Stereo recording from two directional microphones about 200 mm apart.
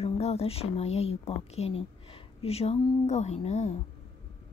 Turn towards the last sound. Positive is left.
turn(degrees=35)  # may be behind; listen again after turning